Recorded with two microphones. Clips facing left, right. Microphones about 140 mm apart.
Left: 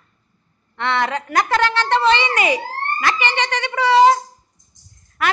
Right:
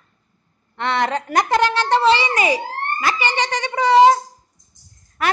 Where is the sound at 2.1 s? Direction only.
35° right (ahead or behind).